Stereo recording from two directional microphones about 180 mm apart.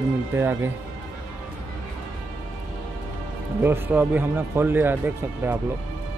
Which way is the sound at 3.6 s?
10° right (ahead or behind).